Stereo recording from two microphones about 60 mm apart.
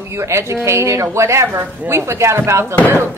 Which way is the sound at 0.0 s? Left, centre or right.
Right.